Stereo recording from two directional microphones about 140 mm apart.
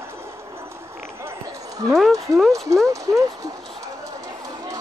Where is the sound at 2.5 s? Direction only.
25° right (ahead or behind).